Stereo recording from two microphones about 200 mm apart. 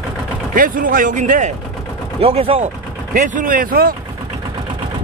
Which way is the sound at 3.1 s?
40° right (ahead or behind).